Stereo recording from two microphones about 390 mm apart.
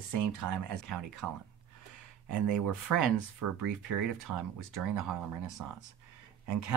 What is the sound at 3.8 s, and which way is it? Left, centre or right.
Speech, right.